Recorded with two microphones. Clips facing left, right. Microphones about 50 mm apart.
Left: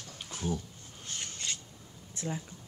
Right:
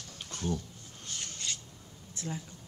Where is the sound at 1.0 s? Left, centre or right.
Left.